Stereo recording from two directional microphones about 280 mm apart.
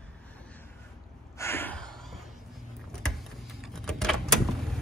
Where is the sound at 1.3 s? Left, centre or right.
Centre.